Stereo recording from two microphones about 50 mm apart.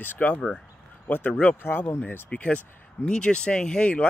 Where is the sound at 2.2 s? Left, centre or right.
Left.